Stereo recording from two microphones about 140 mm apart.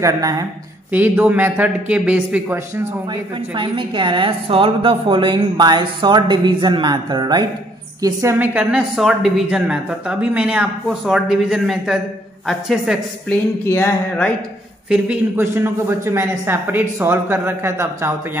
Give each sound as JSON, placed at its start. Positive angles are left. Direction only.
{"t": 0.0, "sound": "a woman's voice", "side_deg": -25}
{"t": 0.9, "sound": "speech", "side_deg": -10}
{"t": 3.1, "sound": "a woman's voice", "side_deg": -35}
{"t": 8.0, "sound": "a woman's voice", "side_deg": -20}
{"t": 8.5, "sound": "speech", "side_deg": -5}
{"t": 13.3, "sound": "speech", "side_deg": 15}
{"t": 15.3, "sound": "speech", "side_deg": -15}